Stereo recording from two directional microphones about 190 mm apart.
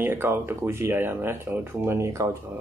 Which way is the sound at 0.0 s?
10° right (ahead or behind).